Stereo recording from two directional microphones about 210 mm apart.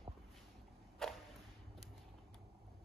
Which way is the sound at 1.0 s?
Centre (ahead or behind).